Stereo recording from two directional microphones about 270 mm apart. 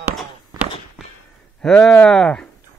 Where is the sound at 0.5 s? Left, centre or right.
Centre.